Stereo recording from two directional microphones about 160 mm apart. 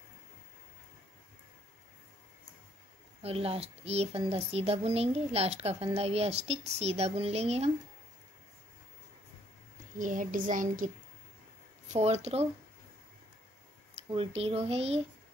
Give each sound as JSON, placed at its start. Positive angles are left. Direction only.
{"t": 3.2, "sound": "speech", "side_deg": -40}
{"t": 9.9, "sound": "a child's voice", "side_deg": -55}
{"t": 11.9, "sound": "speech", "side_deg": -45}
{"t": 14.1, "sound": "speech", "side_deg": -35}